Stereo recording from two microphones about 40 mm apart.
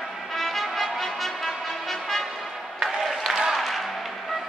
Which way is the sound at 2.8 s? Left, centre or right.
Centre.